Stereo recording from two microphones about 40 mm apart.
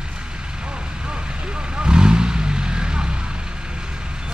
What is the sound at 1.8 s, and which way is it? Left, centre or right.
Vehicle, right.